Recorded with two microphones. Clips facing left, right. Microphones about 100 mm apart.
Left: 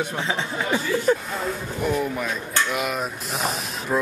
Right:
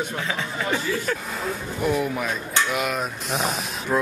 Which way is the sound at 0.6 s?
15° left (ahead or behind).